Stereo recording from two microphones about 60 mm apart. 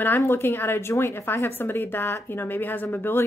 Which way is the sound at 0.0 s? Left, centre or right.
Left.